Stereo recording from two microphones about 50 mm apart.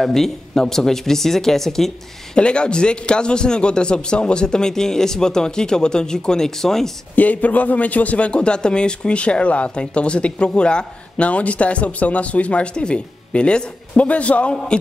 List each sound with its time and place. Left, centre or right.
0.0 s a man's voice: centre
2.3 s a man's voice: centre
7.2 s a man's voice: left